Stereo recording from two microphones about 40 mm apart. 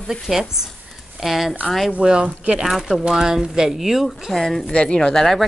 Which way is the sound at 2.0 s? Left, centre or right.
Right.